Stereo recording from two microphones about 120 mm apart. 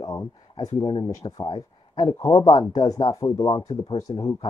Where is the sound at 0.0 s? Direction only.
30° left (ahead or behind).